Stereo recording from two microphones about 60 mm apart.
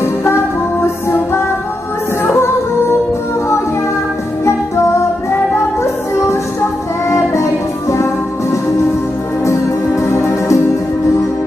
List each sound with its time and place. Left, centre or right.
0.0 s music: left
7.1 s music: left
9.4 s music: left